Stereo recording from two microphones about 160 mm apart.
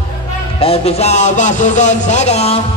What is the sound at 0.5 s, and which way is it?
A man's voice, 35° left (ahead or behind).